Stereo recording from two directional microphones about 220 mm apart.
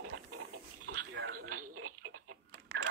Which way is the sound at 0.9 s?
60° right (ahead or behind).